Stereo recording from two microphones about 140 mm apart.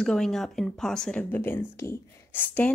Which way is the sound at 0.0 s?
5° left (ahead or behind).